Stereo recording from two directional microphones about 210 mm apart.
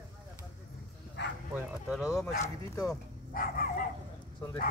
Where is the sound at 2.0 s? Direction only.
15° left (ahead or behind).